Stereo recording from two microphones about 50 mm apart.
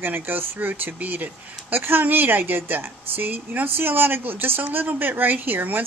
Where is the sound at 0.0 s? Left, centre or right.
Right.